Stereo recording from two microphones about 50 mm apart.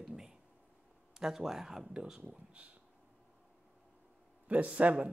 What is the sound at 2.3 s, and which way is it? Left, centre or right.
Speech, right.